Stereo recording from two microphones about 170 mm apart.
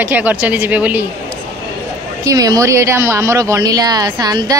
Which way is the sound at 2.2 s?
20° right (ahead or behind).